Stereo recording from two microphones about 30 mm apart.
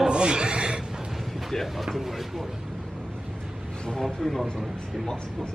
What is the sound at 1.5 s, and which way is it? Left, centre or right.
Speech, centre.